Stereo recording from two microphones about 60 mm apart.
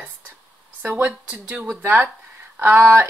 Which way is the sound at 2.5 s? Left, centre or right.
Right.